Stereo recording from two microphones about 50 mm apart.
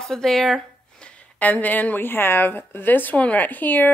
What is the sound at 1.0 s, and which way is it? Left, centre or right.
Speech, left.